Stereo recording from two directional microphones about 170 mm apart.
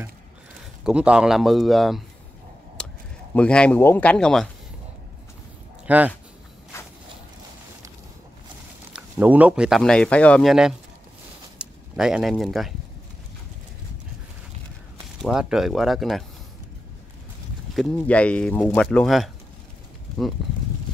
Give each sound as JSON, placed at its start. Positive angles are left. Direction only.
{"t": 0.8, "sound": "speech", "side_deg": -5}
{"t": 2.8, "sound": "a sound", "side_deg": 5}
{"t": 3.3, "sound": "speech", "side_deg": 5}
{"t": 5.9, "sound": "speech", "side_deg": -10}
{"t": 8.9, "sound": "speech", "side_deg": -10}
{"t": 15.2, "sound": "speech", "side_deg": -5}
{"t": 17.7, "sound": "speech", "side_deg": 5}